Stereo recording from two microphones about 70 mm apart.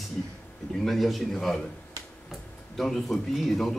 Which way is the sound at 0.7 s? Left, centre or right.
Centre.